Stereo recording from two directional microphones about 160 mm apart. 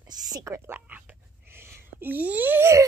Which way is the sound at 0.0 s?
25° right (ahead or behind).